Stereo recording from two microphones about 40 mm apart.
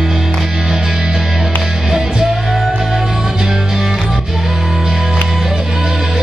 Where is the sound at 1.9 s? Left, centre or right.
Centre.